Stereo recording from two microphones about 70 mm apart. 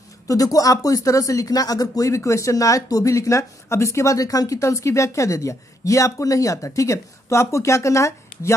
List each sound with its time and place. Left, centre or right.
0.3 s speech: left